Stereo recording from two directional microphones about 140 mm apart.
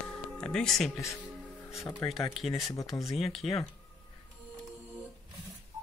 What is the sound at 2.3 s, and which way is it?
Speech, centre (ahead or behind).